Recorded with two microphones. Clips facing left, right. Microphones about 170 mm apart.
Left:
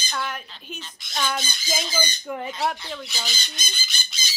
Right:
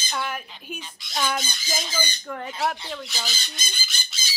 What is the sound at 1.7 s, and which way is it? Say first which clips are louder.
Speech: left 3 dB; 10° left (ahead or behind).